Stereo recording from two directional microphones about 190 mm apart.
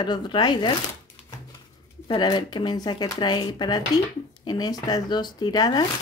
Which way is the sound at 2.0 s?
25° left (ahead or behind).